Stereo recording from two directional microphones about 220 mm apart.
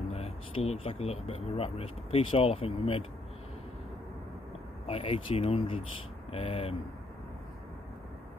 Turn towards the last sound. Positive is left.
turn(degrees=25)  # may be behind; listen again after turning